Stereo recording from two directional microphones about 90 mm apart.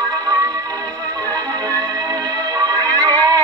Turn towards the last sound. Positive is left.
turn(degrees=-40)  # may be behind; listen again after turning